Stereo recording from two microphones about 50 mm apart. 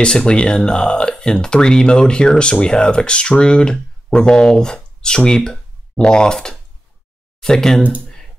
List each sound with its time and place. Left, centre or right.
0.0 s speech: centre